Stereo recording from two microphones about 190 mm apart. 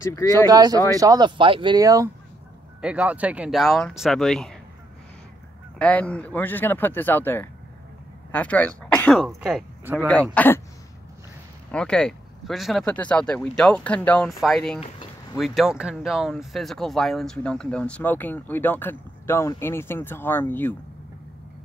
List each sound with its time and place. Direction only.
0.5 s speech: 20° right (ahead or behind)
2.8 s speech: 5° right (ahead or behind)
5.8 s speech: 5° left (ahead or behind)
11.7 s speech: 5° left (ahead or behind)